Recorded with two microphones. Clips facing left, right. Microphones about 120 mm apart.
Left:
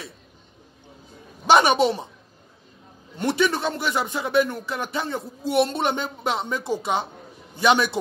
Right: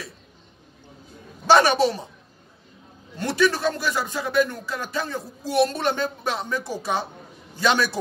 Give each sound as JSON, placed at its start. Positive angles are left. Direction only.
{"t": 1.5, "sound": "a woman's voice", "side_deg": 20}
{"t": 3.2, "sound": "speech", "side_deg": 20}